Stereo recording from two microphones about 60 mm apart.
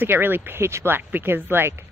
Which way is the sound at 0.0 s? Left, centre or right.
Right.